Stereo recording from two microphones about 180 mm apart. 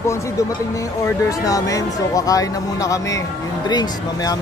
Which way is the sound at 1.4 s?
20° left (ahead or behind).